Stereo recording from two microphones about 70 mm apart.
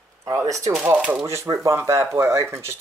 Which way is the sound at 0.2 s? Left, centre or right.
Right.